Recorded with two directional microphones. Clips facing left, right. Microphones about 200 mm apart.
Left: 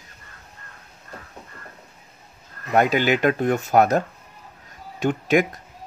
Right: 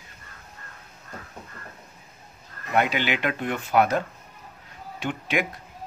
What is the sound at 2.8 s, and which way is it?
Speech, 45° left (ahead or behind).